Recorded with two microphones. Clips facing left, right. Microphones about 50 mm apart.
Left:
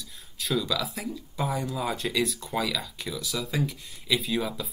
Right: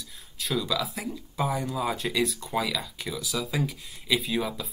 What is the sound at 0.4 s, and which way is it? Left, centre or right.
Speech, centre.